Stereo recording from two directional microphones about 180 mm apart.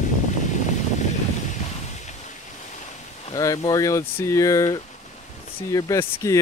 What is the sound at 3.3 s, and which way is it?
Speech, 20° left (ahead or behind).